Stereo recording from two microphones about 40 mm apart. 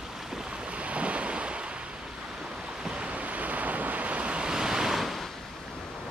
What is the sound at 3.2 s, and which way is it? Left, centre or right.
Waves, right.